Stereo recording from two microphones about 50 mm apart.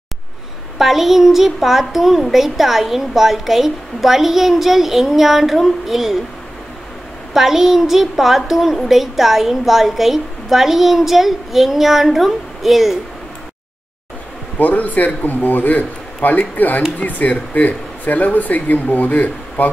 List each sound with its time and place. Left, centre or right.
0.7 s a child's voice: centre
7.3 s a child's voice: centre
14.6 s speech: left